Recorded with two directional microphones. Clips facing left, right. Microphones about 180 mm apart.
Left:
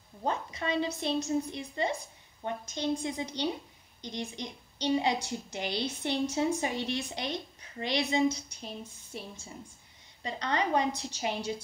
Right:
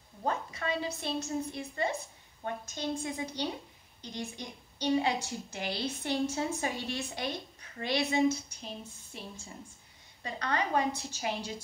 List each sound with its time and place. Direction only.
0.2 s a woman's voice: 20° left (ahead or behind)
10.2 s a woman's voice: 20° left (ahead or behind)